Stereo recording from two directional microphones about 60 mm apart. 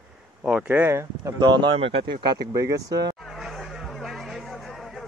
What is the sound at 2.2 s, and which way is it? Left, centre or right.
Speech, right.